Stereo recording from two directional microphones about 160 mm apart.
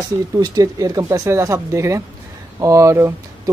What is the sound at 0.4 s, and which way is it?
Speech, 25° right (ahead or behind).